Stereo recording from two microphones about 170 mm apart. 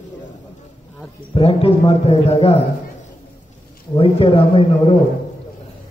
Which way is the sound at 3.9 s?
30° left (ahead or behind).